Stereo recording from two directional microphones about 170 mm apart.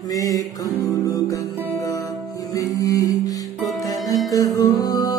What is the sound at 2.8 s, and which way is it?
Music, 20° left (ahead or behind).